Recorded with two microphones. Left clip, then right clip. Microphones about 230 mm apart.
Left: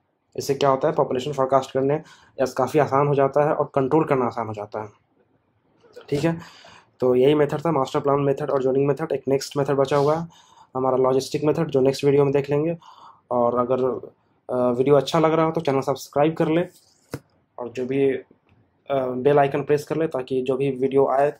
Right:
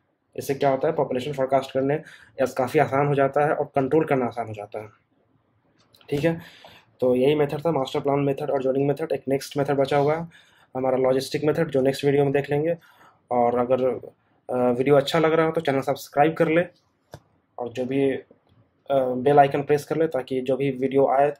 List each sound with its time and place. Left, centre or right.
0.3 s speech: centre
5.9 s speech: centre
14.8 s speech: centre